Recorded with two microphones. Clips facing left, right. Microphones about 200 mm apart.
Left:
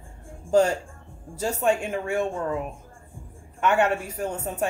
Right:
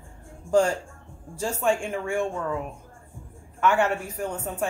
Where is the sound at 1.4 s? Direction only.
20° left (ahead or behind).